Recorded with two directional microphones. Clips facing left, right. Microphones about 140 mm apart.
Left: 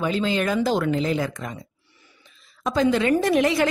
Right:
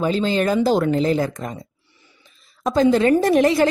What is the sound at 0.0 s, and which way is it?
A woman's voice, 35° right (ahead or behind).